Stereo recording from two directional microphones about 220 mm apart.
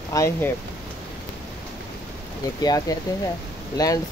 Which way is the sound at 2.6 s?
15° left (ahead or behind).